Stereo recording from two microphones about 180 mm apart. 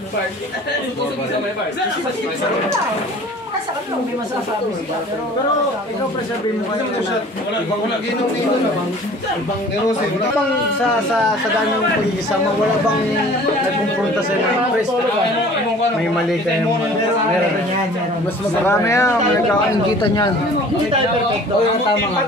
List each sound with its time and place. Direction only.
18.7 s speech: 15° left (ahead or behind)